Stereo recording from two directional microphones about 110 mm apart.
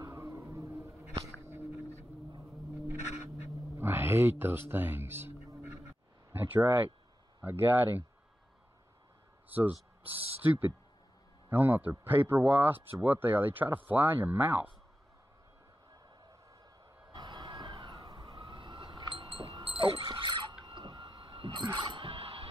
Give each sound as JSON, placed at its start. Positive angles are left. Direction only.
{"t": 0.0, "sound": "a sound", "side_deg": -30}
{"t": 3.7, "sound": "speech", "side_deg": -20}
{"t": 6.3, "sound": "speech", "side_deg": -20}
{"t": 9.5, "sound": "speech", "side_deg": -15}
{"t": 17.1, "sound": "emergency vehicle", "side_deg": -45}
{"t": 20.6, "sound": "a sound", "side_deg": -50}